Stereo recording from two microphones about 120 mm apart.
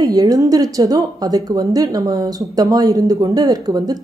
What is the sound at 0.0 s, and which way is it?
A woman's voice, 30° right (ahead or behind).